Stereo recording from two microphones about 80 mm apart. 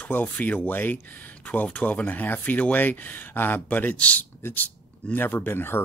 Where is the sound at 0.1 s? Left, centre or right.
Left.